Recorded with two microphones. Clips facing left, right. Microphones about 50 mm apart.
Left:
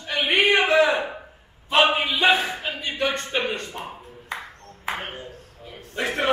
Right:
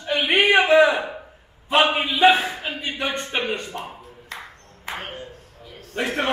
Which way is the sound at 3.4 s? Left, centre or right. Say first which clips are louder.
Right 1 dB; centre.